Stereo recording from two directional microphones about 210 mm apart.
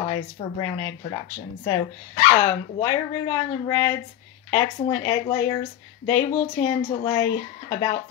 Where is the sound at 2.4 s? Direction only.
15° left (ahead or behind).